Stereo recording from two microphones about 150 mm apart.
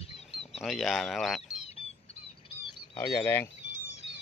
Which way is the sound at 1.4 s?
45° left (ahead or behind).